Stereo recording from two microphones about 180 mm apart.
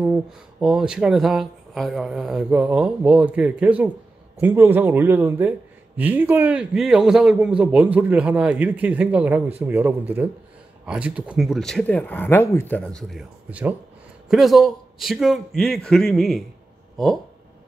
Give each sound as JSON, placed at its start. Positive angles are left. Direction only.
{"t": 0.0, "sound": "a man's voice", "side_deg": -5}